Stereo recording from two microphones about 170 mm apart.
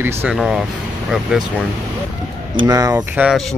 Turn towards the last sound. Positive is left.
turn(degrees=-5)  # may be behind; listen again after turning